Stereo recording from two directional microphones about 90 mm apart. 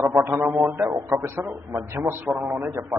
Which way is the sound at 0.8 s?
35° right (ahead or behind).